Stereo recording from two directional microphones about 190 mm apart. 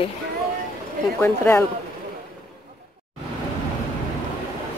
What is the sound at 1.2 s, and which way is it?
Speech, 15° left (ahead or behind).